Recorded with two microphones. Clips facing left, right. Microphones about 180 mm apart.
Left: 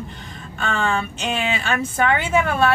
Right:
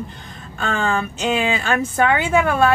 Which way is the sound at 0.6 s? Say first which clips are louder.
Right 1 dB; 40° right (ahead or behind).